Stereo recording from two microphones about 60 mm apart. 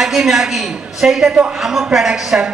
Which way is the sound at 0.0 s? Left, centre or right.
Centre.